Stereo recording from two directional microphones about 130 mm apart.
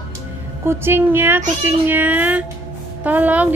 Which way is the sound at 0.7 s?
15° right (ahead or behind).